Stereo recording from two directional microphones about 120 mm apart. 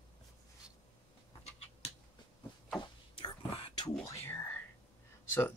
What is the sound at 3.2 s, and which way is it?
Whispering, 50° left (ahead or behind).